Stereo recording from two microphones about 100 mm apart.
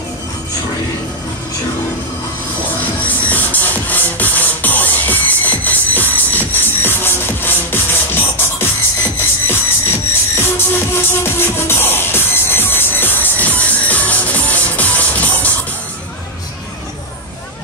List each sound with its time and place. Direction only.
2.8 s music: 15° left (ahead or behind)